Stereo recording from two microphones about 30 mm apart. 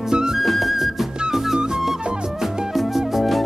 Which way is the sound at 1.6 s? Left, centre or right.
Right.